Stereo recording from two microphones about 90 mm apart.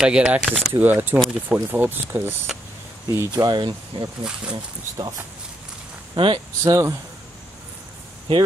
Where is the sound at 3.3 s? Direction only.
45° right (ahead or behind).